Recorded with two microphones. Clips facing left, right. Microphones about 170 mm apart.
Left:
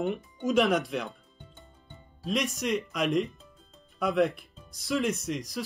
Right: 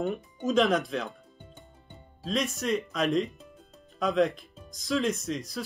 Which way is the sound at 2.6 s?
15° left (ahead or behind).